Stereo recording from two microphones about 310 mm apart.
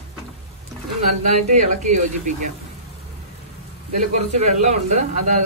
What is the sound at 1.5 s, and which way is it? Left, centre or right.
Speech, right.